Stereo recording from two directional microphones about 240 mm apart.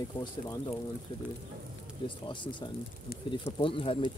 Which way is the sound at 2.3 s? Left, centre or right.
Centre.